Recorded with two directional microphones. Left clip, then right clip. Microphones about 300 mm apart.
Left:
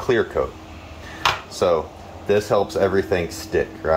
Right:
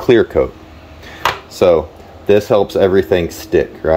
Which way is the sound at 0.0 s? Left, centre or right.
Right.